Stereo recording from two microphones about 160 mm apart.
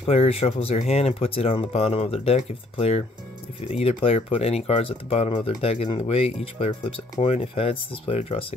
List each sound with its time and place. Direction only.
0.0 s speech: 40° left (ahead or behind)